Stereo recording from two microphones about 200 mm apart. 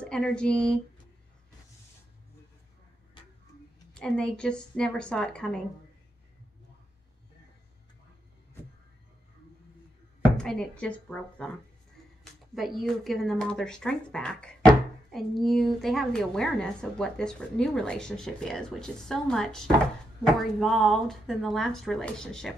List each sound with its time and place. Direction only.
0.0 s speech: 5° left (ahead or behind)
3.2 s tick-tock: 25° left (ahead or behind)
3.9 s speech: 5° left (ahead or behind)
10.2 s speech: 5° left (ahead or behind)
12.5 s speech: centre (ahead or behind)